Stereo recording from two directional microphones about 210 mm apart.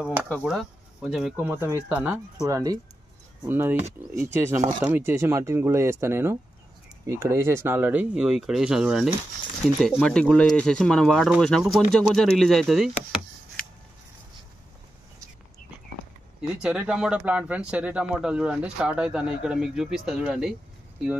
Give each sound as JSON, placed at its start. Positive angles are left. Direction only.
{"t": 0.0, "sound": "speech", "side_deg": -5}
{"t": 1.4, "sound": "speech", "side_deg": -10}
{"t": 16.3, "sound": "speech", "side_deg": -5}